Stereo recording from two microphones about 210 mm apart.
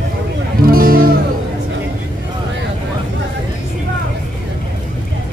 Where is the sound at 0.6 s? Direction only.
45° right (ahead or behind).